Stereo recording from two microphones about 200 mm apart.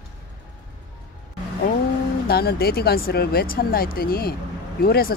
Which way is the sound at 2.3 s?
50° left (ahead or behind).